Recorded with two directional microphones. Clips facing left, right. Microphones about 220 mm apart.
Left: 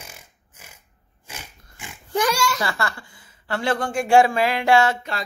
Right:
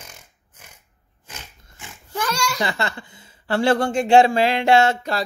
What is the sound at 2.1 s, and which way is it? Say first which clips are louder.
Pig: left 5 dB; 15° left (ahead or behind).